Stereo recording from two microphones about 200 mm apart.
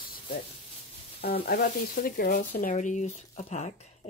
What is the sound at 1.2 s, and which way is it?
Speech, 45° left (ahead or behind).